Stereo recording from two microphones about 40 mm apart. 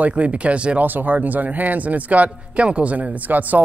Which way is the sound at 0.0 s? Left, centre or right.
Right.